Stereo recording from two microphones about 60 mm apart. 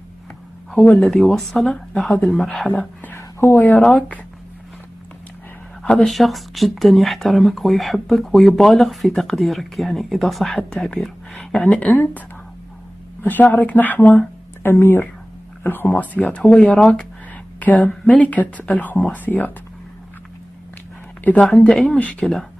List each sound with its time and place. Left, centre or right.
1.0 s speech: centre
2.0 s speech: centre
3.2 s a sound: left
3.5 s a woman's voice: left
6.0 s speech: centre
11.3 s a woman's voice: centre
13.2 s a woman's voice: left
21.5 s speech: centre
22.2 s speech: centre